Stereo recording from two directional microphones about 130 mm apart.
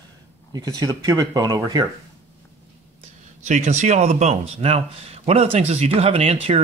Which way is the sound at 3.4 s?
70° right (ahead or behind).